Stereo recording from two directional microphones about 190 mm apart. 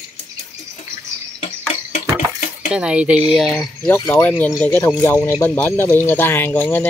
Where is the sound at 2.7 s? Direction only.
5° right (ahead or behind).